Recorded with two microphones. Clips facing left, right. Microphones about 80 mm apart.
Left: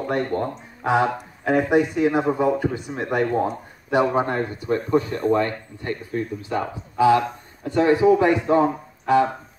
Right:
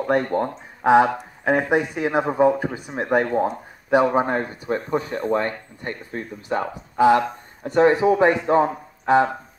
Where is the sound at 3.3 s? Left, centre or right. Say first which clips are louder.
Right 1 dB; centre.